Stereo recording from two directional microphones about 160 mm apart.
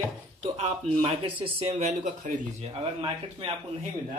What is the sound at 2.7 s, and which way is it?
Speech, 35° right (ahead or behind).